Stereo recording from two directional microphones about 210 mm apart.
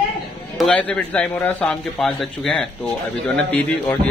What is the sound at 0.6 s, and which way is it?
A man's voice, 5° left (ahead or behind).